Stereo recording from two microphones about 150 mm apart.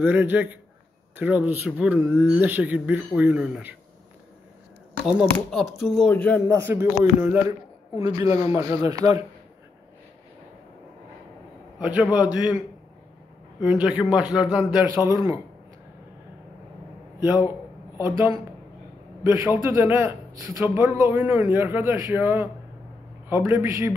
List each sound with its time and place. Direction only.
0.0 s a man's voice: 10° right (ahead or behind)
5.3 s speech: 5° left (ahead or behind)
6.1 s a man's voice: 10° left (ahead or behind)
6.4 s a man's voice: 20° right (ahead or behind)
11.8 s a man's voice: 10° right (ahead or behind)
15.0 s speech: 20° right (ahead or behind)
17.9 s a man's voice: 15° right (ahead or behind)